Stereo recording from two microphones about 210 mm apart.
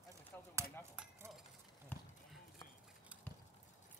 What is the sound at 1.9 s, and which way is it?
Clip-clop, 5° left (ahead or behind).